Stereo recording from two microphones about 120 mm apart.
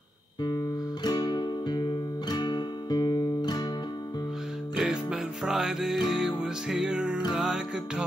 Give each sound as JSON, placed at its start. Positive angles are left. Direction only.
{"t": 1.0, "sound": "music", "side_deg": 35}
{"t": 4.7, "sound": "music", "side_deg": -5}